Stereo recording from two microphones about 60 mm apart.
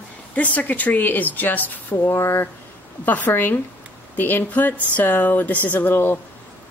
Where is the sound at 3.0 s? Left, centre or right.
Left.